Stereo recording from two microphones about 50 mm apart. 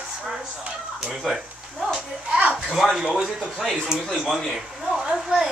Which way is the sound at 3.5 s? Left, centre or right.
Centre.